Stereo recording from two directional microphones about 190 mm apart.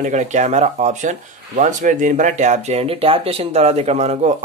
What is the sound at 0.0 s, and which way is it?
Speech, 40° right (ahead or behind).